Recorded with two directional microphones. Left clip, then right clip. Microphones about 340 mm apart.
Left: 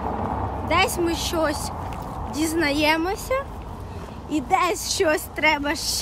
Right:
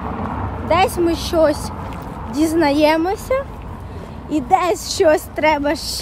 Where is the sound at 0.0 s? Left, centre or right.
Left.